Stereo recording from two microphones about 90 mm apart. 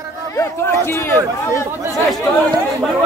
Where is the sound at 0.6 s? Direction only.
25° left (ahead or behind).